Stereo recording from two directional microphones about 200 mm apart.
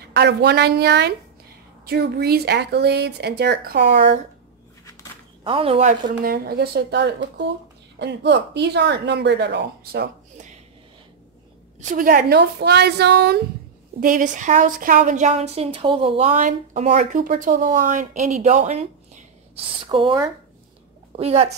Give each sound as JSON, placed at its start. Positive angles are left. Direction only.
{"t": 0.1, "sound": "speech", "side_deg": -55}
{"t": 5.4, "sound": "speech", "side_deg": -25}
{"t": 6.2, "sound": "speech", "side_deg": -50}
{"t": 11.8, "sound": "a woman's voice", "side_deg": -40}
{"t": 13.9, "sound": "speech", "side_deg": -40}
{"t": 16.3, "sound": "speech", "side_deg": -40}
{"t": 21.2, "sound": "speech", "side_deg": -30}